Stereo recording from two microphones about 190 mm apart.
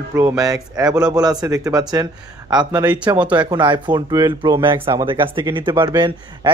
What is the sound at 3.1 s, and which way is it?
Speech, 10° right (ahead or behind).